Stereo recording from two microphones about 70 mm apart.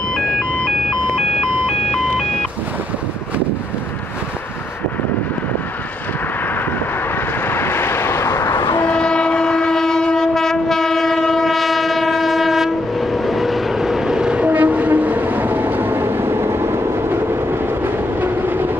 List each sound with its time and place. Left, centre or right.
7.4 s vehicle: left
8.4 s a sound: left
8.9 s train: centre; by 18.7 s right